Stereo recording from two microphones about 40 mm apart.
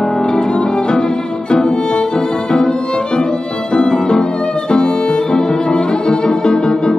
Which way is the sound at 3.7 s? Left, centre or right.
Centre.